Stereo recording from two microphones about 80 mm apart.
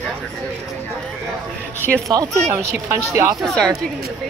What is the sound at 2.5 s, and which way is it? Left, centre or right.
Speech, right.